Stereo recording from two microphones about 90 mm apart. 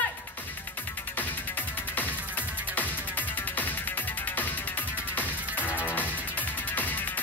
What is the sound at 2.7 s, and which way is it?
Music, 20° left (ahead or behind).